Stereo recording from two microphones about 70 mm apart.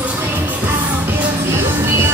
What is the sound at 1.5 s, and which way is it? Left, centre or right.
Music, right.